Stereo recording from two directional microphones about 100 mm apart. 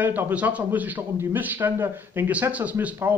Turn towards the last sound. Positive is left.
turn(degrees=-20)  # may be behind; listen again after turning